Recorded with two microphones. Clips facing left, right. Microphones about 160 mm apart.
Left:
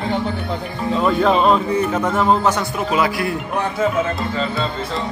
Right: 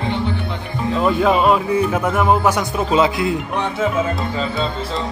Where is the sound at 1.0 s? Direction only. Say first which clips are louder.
Even; 5° right (ahead or behind).